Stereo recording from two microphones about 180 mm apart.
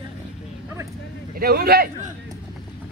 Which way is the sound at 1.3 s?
55° right (ahead or behind).